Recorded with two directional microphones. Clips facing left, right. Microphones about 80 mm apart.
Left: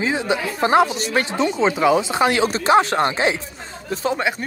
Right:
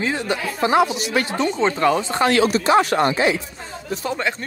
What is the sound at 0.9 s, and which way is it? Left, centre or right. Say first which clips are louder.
Speech: even; left.